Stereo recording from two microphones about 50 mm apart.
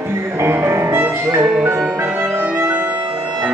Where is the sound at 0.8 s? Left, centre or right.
Right.